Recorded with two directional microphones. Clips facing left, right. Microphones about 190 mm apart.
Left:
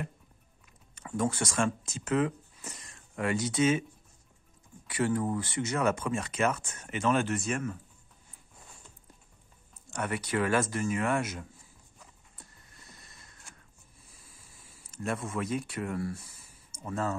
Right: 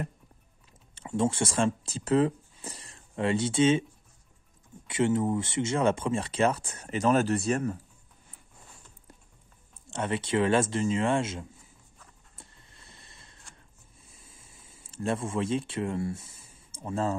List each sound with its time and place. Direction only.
0.9 s speech: 25° right (ahead or behind)
4.8 s speech: 25° right (ahead or behind)
9.8 s speech: 25° right (ahead or behind)
12.4 s vehicle: 25° right (ahead or behind)
14.0 s a sound: 25° right (ahead or behind)